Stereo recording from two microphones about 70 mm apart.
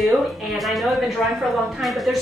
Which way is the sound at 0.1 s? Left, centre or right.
Centre.